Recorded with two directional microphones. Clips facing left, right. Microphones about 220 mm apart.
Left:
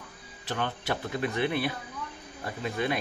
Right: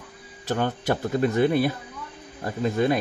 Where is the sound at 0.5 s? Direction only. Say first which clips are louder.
Right 7 dB; 40° right (ahead or behind).